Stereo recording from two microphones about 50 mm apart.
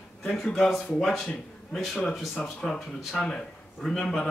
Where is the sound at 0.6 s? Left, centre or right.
Centre.